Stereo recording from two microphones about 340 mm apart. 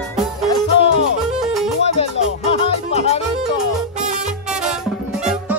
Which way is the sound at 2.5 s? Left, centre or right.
Centre.